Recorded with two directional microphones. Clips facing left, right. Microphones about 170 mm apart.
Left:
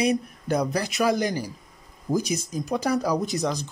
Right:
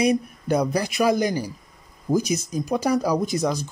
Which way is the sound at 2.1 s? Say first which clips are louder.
Right 3 dB; 30° right (ahead or behind).